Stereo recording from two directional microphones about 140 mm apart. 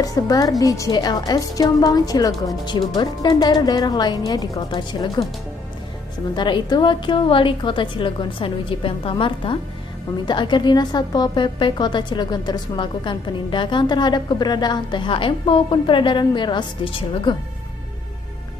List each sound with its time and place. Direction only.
0.0 s a woman's voice: 25° left (ahead or behind)
6.3 s a woman's voice: 35° left (ahead or behind)